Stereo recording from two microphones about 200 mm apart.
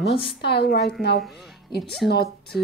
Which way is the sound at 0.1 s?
25° left (ahead or behind).